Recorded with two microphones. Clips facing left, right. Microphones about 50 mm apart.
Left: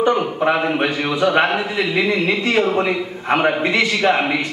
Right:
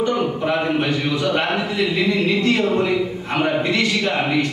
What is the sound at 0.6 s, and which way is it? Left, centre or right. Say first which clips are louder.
Speech: left 1 dB; centre.